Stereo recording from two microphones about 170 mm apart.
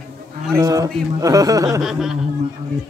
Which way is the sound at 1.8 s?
Centre (ahead or behind).